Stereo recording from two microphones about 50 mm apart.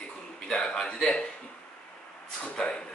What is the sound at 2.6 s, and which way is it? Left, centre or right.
Speech, centre.